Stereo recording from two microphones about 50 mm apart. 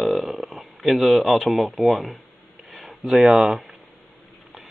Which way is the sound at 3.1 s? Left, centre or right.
Centre.